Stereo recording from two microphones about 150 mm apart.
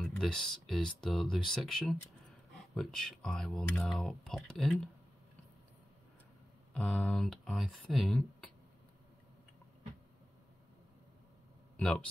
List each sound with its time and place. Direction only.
0.0 s speech: 5° left (ahead or behind)
6.7 s speech: 10° left (ahead or behind)
11.7 s a sound: 5° left (ahead or behind)